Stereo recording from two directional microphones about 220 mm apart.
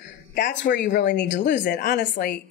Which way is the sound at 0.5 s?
50° left (ahead or behind).